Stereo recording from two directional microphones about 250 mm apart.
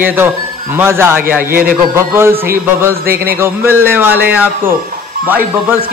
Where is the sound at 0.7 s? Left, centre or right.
Centre.